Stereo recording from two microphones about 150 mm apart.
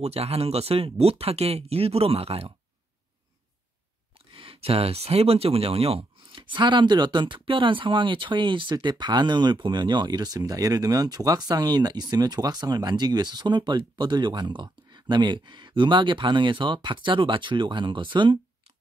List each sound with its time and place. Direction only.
0.0 s speech: 40° right (ahead or behind)
4.3 s speech: 35° right (ahead or behind)